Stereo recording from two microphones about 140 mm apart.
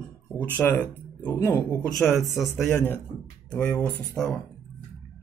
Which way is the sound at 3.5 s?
10° left (ahead or behind).